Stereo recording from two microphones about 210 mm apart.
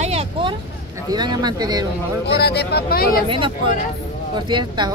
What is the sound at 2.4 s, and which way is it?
Speech, 50° left (ahead or behind).